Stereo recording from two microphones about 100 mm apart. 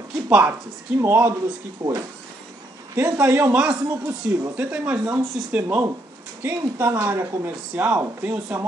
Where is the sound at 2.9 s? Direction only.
15° right (ahead or behind).